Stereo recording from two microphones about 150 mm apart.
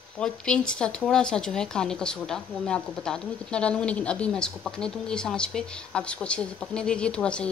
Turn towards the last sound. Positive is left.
turn(degrees=5)  # may be behind; listen again after turning